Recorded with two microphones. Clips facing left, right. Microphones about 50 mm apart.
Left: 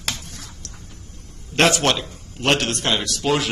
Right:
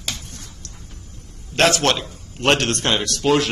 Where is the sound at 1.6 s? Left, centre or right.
Centre.